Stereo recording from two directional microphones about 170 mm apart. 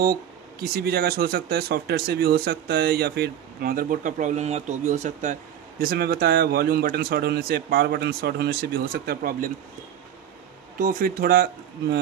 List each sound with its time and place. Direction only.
0.0 s speech: 65° right (ahead or behind)
10.8 s speech: 55° right (ahead or behind)